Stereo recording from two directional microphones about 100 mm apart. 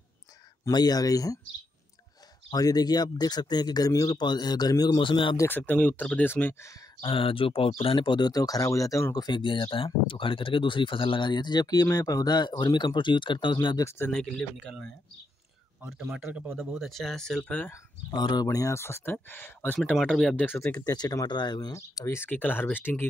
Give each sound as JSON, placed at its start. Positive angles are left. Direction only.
{"t": 0.7, "sound": "speech", "side_deg": 40}
{"t": 2.5, "sound": "speech", "side_deg": 40}
{"t": 5.5, "sound": "speech", "side_deg": 15}
{"t": 7.0, "sound": "speech", "side_deg": 65}
{"t": 13.7, "sound": "speech", "side_deg": 25}
{"t": 14.1, "sound": "speech", "side_deg": 5}
{"t": 15.9, "sound": "speech", "side_deg": -5}
{"t": 18.1, "sound": "speech", "side_deg": 45}
{"t": 20.0, "sound": "speech", "side_deg": 5}
{"t": 20.6, "sound": "speech", "side_deg": 35}
{"t": 21.7, "sound": "speech", "side_deg": 30}